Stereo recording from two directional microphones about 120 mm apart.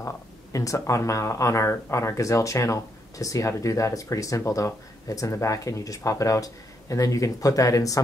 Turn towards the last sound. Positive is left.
turn(degrees=30)  # may be behind; listen again after turning